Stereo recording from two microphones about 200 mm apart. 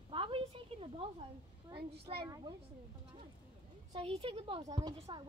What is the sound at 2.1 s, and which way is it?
Speech, 20° right (ahead or behind).